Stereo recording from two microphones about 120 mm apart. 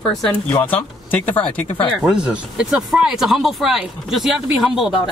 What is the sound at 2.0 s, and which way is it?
Speech, 5° right (ahead or behind).